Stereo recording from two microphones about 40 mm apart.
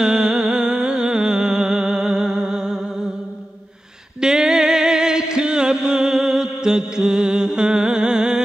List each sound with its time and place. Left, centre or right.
0.0 s music: centre
4.2 s music: centre